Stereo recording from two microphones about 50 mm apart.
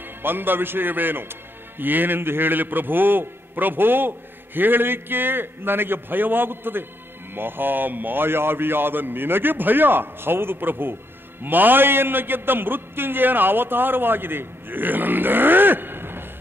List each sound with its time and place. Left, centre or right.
0.2 s a man's voice: right